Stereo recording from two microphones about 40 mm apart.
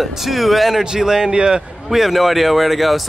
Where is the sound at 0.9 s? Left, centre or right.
Centre.